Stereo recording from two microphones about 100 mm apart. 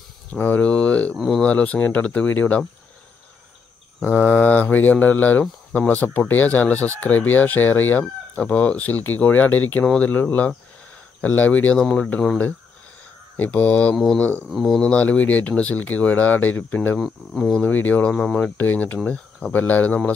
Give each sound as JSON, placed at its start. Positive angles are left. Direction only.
{"t": 0.3, "sound": "speech", "side_deg": 15}
{"t": 1.1, "sound": "cricket", "side_deg": -5}
{"t": 1.4, "sound": "speech", "side_deg": 15}
{"t": 4.0, "sound": "speech", "side_deg": 20}
{"t": 13.4, "sound": "speech", "side_deg": 15}
{"t": 14.5, "sound": "cricket", "side_deg": 0}
{"t": 14.8, "sound": "speech", "side_deg": 15}
{"t": 17.0, "sound": "cricket", "side_deg": 0}
{"t": 17.6, "sound": "speech", "side_deg": 15}
{"t": 18.6, "sound": "speech", "side_deg": 20}